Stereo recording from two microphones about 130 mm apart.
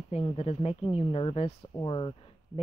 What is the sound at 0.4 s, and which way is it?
Speech, 45° left (ahead or behind).